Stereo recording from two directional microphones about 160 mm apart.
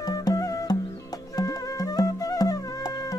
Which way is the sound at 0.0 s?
25° left (ahead or behind).